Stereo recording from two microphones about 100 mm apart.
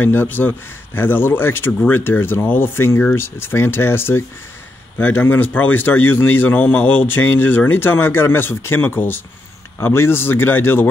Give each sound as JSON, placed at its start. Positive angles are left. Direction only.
{"t": 0.0, "sound": "speech", "side_deg": 20}